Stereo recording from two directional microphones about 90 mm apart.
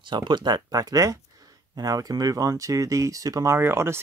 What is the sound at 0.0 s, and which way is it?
Speech, 60° right (ahead or behind).